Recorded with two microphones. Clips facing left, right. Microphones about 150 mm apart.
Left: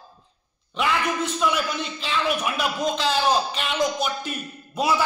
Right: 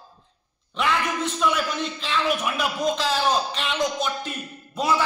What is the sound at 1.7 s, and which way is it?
A man's voice, centre (ahead or behind).